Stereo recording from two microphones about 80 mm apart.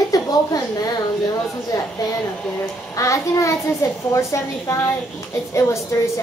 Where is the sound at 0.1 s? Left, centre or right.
Left.